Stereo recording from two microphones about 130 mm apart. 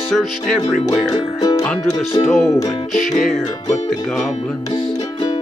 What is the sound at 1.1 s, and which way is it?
Music, 30° left (ahead or behind).